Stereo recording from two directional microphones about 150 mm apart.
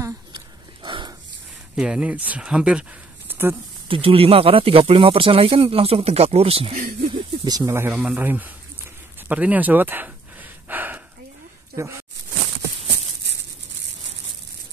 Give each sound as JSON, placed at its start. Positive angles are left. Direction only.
{"t": 0.8, "sound": "dog", "side_deg": -30}
{"t": 1.8, "sound": "speech", "side_deg": -5}
{"t": 3.3, "sound": "a sound", "side_deg": -15}
{"t": 3.9, "sound": "speech", "side_deg": -35}
{"t": 7.1, "sound": "snake", "side_deg": -25}
{"t": 7.9, "sound": "speech", "side_deg": -10}
{"t": 10.7, "sound": "a sound", "side_deg": -10}
{"t": 11.7, "sound": "speech", "side_deg": -20}